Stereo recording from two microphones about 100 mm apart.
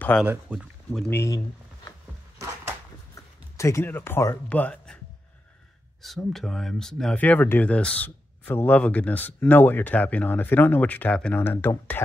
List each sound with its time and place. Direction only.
0.2 s speech: 15° right (ahead or behind)
0.6 s speech: centre (ahead or behind)
3.5 s speech: 30° left (ahead or behind)
6.0 s speech: centre (ahead or behind)
7.2 s speech: 15° left (ahead or behind)